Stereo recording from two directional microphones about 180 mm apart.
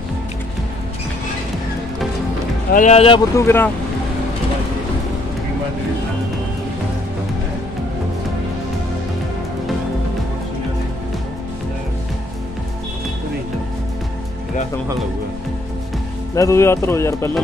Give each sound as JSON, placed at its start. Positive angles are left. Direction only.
{"t": 2.7, "sound": "speech", "side_deg": 40}
{"t": 3.3, "sound": "speech", "side_deg": 15}
{"t": 16.3, "sound": "speech", "side_deg": 15}